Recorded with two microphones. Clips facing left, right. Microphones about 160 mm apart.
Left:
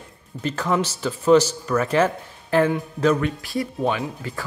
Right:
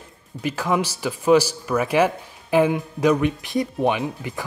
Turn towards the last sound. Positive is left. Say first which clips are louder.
# right 2 dB
turn(degrees=-15)  # may be behind; listen again after turning